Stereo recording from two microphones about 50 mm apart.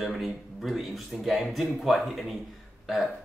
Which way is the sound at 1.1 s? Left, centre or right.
Centre.